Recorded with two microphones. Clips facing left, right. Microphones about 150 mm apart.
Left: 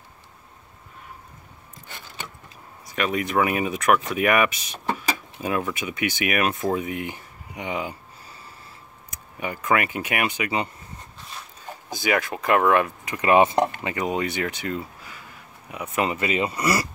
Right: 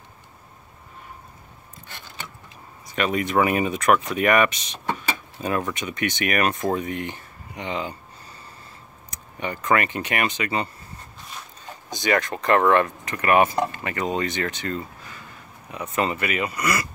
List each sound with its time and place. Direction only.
2.9 s speech: centre (ahead or behind)
9.1 s speech: 5° left (ahead or behind)
11.9 s speech: 5° left (ahead or behind); by 16.8 s 30° left (ahead or behind)